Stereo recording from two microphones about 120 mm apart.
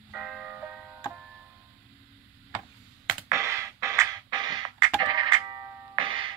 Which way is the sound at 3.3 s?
25° right (ahead or behind).